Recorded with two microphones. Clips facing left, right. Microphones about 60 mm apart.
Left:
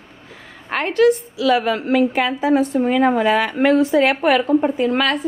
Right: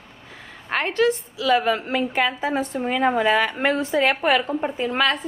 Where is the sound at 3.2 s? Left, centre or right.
Left.